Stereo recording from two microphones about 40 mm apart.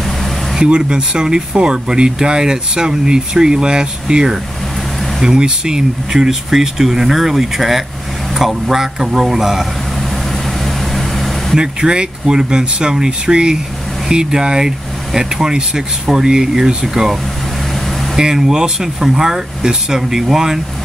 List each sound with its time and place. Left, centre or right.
0.6 s speech: right; by 9.7 s centre
10.6 s vehicle: centre
11.5 s speech: centre